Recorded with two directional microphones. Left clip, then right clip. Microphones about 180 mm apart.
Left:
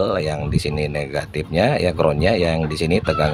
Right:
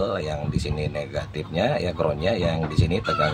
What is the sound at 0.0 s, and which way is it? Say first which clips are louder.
Speech: left 5 dB; 50° left (ahead or behind).